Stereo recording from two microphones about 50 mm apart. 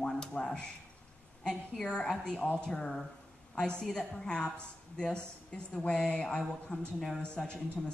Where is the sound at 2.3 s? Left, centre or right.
Left.